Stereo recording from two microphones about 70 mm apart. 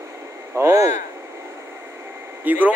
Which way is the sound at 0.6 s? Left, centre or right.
Right.